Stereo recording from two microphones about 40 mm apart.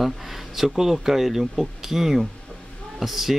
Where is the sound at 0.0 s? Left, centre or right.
Centre.